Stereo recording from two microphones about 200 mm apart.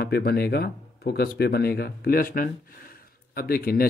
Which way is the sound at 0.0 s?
50° left (ahead or behind).